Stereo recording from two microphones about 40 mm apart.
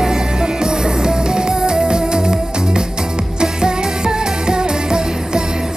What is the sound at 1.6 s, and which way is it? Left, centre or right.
Music, centre.